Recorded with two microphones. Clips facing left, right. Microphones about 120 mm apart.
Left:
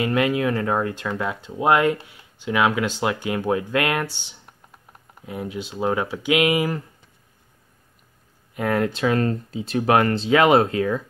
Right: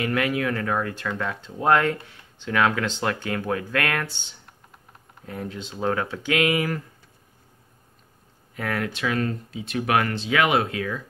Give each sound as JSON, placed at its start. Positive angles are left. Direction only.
{"t": 0.0, "sound": "speech", "side_deg": 20}
{"t": 5.2, "sound": "speech", "side_deg": 15}
{"t": 8.5, "sound": "speech", "side_deg": 25}